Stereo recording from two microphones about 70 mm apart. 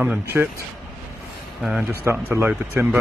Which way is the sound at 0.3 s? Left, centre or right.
Right.